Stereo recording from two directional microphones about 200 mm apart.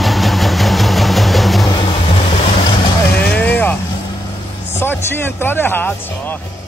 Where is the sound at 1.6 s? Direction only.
20° left (ahead or behind).